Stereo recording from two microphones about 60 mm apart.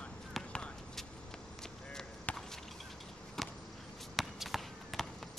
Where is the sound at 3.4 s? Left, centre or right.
Centre.